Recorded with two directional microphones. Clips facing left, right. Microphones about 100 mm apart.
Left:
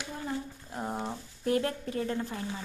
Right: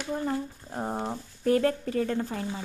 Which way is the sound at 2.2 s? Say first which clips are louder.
Right 4 dB; 25° right (ahead or behind).